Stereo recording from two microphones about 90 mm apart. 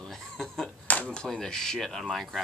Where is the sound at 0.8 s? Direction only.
15° left (ahead or behind).